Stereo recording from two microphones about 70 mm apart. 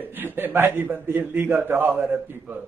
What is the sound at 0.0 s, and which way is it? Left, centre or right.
A man's voice, right.